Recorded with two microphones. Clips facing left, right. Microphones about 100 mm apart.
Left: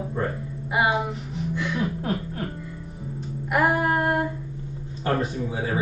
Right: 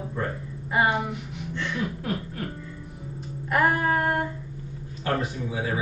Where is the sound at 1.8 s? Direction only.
35° left (ahead or behind).